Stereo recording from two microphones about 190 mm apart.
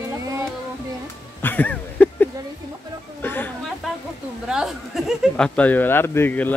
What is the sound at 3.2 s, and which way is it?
Speech, 10° left (ahead or behind).